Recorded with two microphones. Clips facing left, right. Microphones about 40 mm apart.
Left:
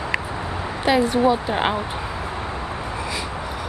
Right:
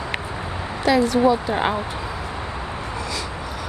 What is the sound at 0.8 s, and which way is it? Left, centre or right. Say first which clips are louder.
Speech: right 1 dB; left.